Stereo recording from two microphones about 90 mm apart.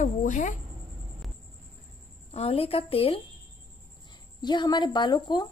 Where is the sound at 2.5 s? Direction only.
90° left.